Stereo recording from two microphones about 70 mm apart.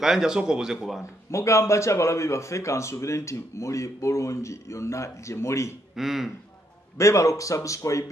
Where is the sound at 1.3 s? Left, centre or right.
Left.